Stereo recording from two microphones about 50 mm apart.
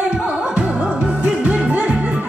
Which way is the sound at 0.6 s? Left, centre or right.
Right.